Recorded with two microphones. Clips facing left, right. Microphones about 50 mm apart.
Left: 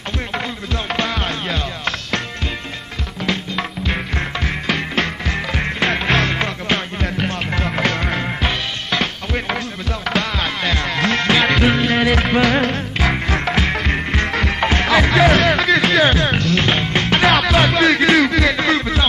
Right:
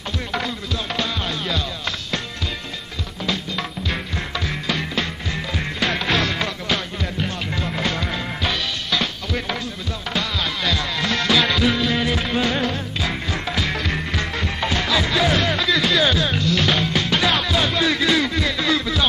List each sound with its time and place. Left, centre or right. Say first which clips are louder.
0.9 s music: left 4 dB; left
3.3 s music: left 3 dB; left
4.5 s music: left 3 dB; left
5.8 s music: left 3 dB; left
7.0 s music: left 4 dB; left
12.0 s music: left 6 dB; left
12.6 s music: left 5 dB; left
13.7 s music: left 4 dB; left
14.2 s music: left 6 dB; left
16.6 s music: left 2 dB; left
17.0 s music: left 5 dB; left
18.6 s music: left 3 dB; left